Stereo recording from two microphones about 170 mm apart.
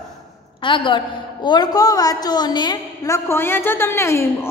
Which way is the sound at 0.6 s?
30° left (ahead or behind).